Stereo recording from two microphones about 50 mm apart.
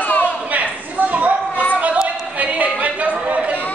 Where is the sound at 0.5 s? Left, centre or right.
Right.